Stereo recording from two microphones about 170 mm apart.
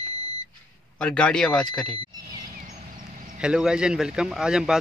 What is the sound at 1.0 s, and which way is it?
Speech, 5° left (ahead or behind).